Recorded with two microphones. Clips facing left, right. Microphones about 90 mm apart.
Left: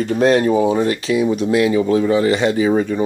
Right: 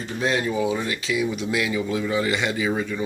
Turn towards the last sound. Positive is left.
turn(degrees=40)  # may be behind; listen again after turning